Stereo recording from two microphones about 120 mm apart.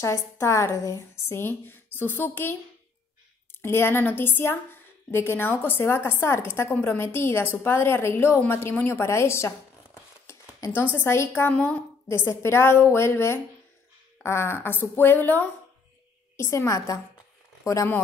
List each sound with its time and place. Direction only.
0.0 s a woman's voice: 25° left (ahead or behind)
3.6 s a woman's voice: 20° left (ahead or behind)
12.1 s a woman's voice: 20° left (ahead or behind)